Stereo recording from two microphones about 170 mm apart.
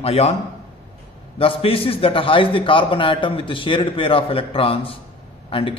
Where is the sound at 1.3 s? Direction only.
35° left (ahead or behind).